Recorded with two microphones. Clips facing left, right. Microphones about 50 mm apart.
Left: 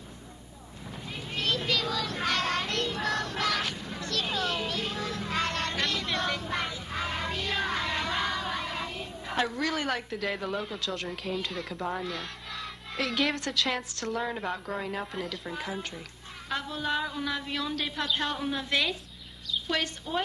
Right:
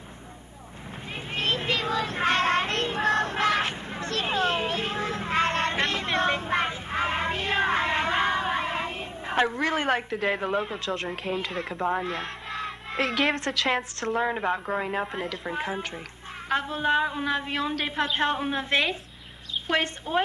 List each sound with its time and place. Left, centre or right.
1.3 s child singing: right
10.1 s a woman's voice: right
11.9 s a sound: right
13.2 s a woman's voice: right